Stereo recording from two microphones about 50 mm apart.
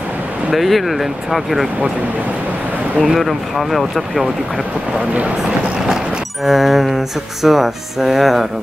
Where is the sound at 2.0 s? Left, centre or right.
Right.